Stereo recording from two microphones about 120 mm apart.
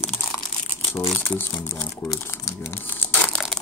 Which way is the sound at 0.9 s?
10° left (ahead or behind).